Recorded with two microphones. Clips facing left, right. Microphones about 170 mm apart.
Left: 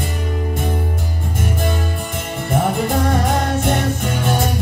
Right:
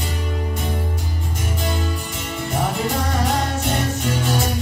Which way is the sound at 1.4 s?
50° left (ahead or behind).